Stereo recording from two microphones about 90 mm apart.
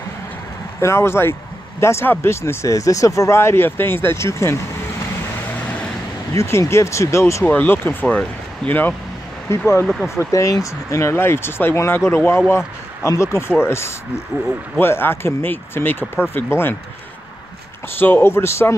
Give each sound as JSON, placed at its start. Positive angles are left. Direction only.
{"t": 0.7, "sound": "speech", "side_deg": 30}
{"t": 6.3, "sound": "speech", "side_deg": 30}
{"t": 7.4, "sound": "speech", "side_deg": 20}
{"t": 10.0, "sound": "speech", "side_deg": 35}
{"t": 17.9, "sound": "speech", "side_deg": 20}